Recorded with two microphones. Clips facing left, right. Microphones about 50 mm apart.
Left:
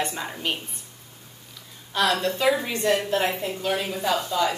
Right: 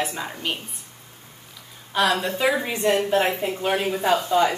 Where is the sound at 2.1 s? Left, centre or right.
Centre.